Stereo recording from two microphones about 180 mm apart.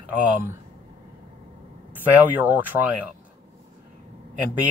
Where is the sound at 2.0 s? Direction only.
10° right (ahead or behind).